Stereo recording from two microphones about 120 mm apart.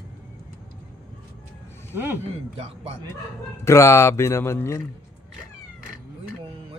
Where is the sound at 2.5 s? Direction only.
60° right (ahead or behind).